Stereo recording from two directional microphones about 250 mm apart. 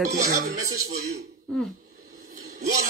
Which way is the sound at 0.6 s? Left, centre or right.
Right.